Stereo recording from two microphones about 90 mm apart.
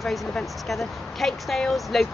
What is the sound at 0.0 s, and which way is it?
Speech, 5° left (ahead or behind).